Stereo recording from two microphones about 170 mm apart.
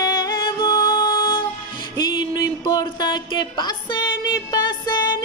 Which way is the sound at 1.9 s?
25° left (ahead or behind).